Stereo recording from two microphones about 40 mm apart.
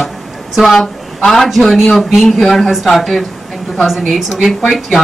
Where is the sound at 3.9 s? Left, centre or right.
Centre.